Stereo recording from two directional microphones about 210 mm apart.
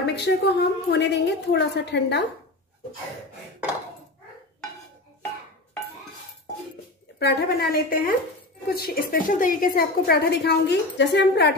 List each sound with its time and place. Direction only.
0.0 s a woman's voice: 55° left (ahead or behind)
7.2 s a woman's voice: 50° left (ahead or behind)